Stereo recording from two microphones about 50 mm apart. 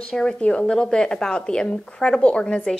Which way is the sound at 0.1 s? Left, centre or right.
Centre.